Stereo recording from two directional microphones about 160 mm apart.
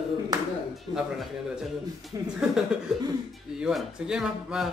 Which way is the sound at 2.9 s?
Centre (ahead or behind).